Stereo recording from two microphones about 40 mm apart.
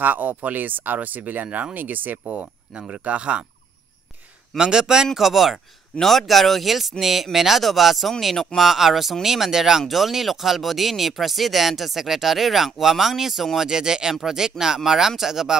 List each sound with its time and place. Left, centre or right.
0.0 s speech: right
2.9 s speech: right
4.6 s speech: centre
5.1 s speech: centre
13.7 s speech: centre